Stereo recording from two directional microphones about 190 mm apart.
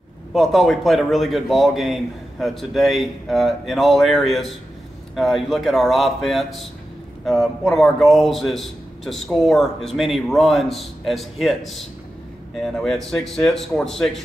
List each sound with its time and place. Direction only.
0.3 s a man's voice: centre (ahead or behind)